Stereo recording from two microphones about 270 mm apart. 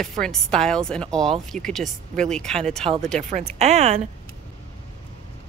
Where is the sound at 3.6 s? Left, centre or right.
Right.